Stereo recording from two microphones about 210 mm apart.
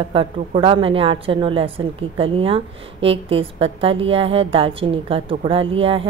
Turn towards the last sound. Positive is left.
turn(degrees=-25)  # may be behind; listen again after turning